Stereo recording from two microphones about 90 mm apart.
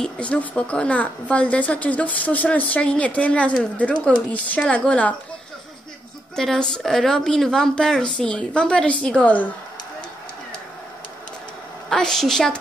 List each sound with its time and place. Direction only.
0.0 s speech: 15° left (ahead or behind)
6.3 s speech: 5° left (ahead or behind)
11.9 s speech: 5° left (ahead or behind)